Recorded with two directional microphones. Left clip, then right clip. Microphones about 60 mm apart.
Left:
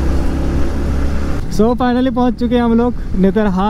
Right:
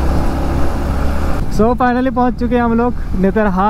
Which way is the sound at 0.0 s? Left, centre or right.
Right.